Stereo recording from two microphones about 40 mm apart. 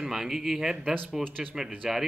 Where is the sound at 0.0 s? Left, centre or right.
Centre.